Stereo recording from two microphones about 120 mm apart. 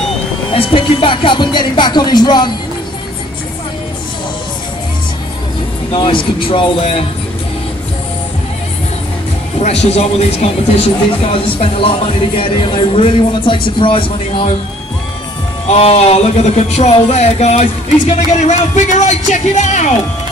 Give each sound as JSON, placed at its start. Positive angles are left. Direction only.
{"t": 0.5, "sound": "music", "side_deg": 50}
{"t": 5.9, "sound": "speech", "side_deg": 45}
{"t": 9.8, "sound": "speech", "side_deg": 60}
{"t": 15.6, "sound": "speech", "side_deg": 60}